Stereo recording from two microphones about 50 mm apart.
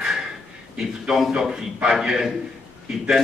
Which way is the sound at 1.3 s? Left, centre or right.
Centre.